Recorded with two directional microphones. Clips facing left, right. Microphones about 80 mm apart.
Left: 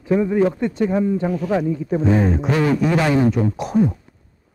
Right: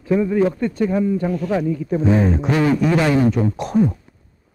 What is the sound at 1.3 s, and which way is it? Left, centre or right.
Speech, centre.